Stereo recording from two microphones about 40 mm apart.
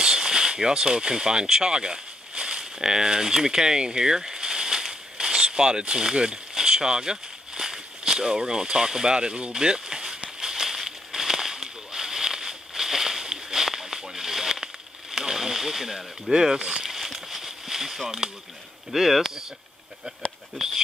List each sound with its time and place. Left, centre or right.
0.0 s speech: centre
10.4 s a sound: centre
18.9 s speech: centre